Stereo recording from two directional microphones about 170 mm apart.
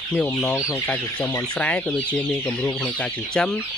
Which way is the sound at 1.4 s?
5° left (ahead or behind).